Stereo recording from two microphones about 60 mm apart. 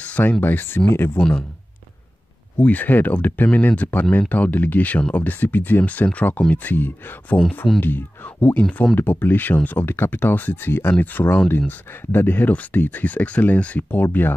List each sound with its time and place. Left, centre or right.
0.4 s speech: left
2.5 s speech: left
7.4 s speech: centre
7.8 s speech: left